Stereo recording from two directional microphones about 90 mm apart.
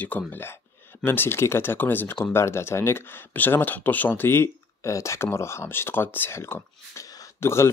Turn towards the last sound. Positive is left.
turn(degrees=30)  # may be behind; listen again after turning